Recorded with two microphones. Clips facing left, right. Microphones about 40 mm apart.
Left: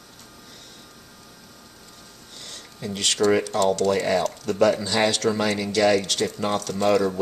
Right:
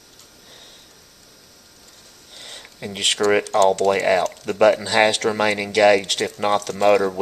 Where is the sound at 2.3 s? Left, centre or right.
Right.